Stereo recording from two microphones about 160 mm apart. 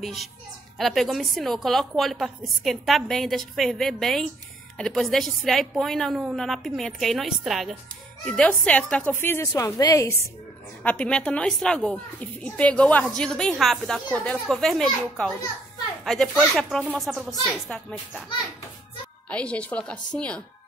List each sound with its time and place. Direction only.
0.0 s a child's voice: centre (ahead or behind)
9.5 s a woman's voice: 25° left (ahead or behind); by 18.2 s centre (ahead or behind)
19.2 s a woman's voice: 5° left (ahead or behind)